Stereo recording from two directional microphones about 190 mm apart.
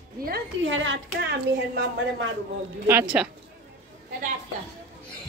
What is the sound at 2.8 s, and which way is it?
Speech, 10° right (ahead or behind).